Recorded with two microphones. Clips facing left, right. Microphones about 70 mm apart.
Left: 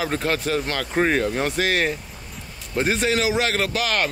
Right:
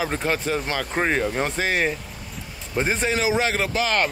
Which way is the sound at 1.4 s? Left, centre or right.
Centre.